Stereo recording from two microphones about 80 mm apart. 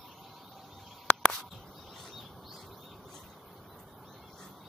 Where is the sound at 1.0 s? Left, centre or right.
Centre.